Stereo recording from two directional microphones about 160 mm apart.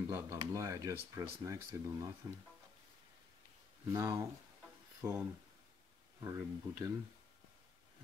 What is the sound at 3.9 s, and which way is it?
Speech, 20° right (ahead or behind).